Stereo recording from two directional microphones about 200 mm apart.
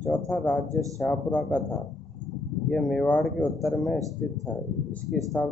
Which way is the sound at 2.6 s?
5° left (ahead or behind).